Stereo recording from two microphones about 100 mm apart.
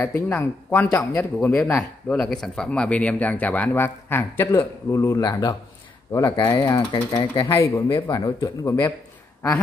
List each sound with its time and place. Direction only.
0.4 s speech: 20° left (ahead or behind)
1.6 s speech: 10° left (ahead or behind); by 5.4 s 30° left (ahead or behind)
6.1 s speech: 40° left (ahead or behind)
7.4 s speech: 30° left (ahead or behind)